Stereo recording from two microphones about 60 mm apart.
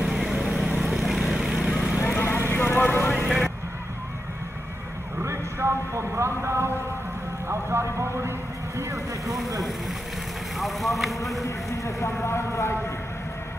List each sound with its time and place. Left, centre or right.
0.1 s vehicle: centre
2.0 s vehicle: left
3.3 s vehicle: centre
5.2 s a sound: right
10.6 s vehicle: centre
11.4 s a sound: left
12.2 s vehicle: left